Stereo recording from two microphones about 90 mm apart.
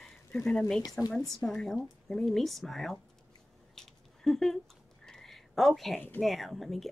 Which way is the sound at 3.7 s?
5° left (ahead or behind).